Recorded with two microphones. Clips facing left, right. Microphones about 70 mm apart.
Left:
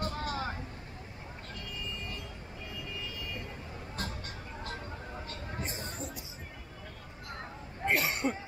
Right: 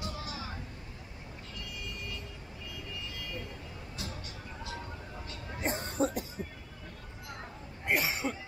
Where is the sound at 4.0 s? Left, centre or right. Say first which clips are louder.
Left 3 dB; left.